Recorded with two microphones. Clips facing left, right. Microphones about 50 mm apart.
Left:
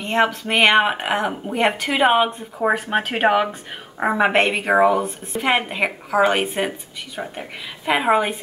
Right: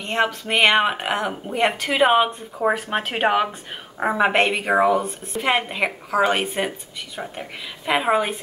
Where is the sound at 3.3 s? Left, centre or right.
Centre.